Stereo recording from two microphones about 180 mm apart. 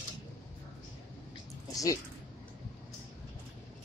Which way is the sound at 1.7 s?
20° left (ahead or behind).